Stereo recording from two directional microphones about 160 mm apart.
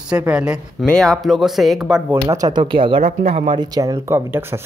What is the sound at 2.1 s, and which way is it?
Speech, 20° right (ahead or behind).